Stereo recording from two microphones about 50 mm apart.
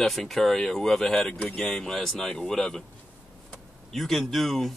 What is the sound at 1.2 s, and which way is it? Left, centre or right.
Speech, centre.